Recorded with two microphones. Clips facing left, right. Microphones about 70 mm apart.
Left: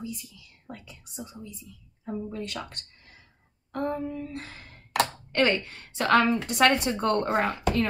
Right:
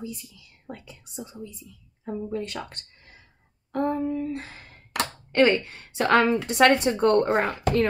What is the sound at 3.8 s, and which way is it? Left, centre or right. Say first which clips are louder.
Speech: right 5 dB; right.